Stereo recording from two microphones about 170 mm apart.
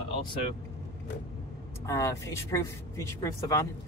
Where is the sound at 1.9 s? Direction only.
20° left (ahead or behind).